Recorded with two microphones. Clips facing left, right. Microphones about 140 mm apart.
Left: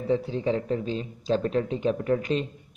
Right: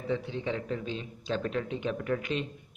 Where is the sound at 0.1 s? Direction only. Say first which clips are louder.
Left 7 dB; 35° left (ahead or behind).